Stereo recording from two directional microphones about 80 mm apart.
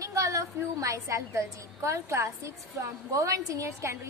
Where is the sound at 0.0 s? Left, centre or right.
Right.